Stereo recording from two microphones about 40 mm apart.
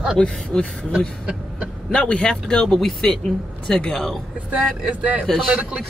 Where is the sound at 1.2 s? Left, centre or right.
Right.